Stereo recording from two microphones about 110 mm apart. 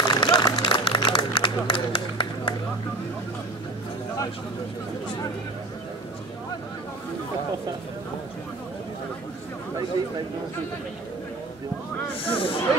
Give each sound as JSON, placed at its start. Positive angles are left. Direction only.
{"t": 0.0, "sound": "run", "side_deg": 40}
{"t": 12.3, "sound": "speech", "side_deg": 55}